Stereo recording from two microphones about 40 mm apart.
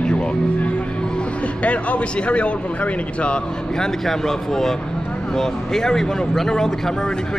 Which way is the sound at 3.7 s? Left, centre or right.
Centre.